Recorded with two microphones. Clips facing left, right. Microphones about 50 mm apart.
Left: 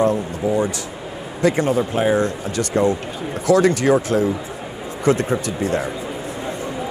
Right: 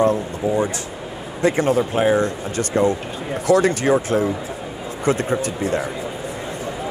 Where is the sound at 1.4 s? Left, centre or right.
Right.